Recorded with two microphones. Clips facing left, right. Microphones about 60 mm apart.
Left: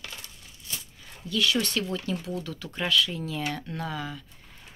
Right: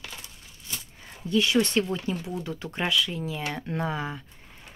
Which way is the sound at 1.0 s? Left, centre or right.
Right.